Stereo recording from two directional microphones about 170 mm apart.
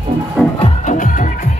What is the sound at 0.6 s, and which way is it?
Music, 45° left (ahead or behind).